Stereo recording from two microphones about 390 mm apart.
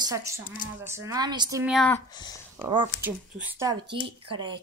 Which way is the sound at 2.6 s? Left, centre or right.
Centre.